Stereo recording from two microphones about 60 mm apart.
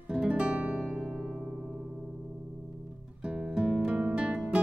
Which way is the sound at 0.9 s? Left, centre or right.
Right.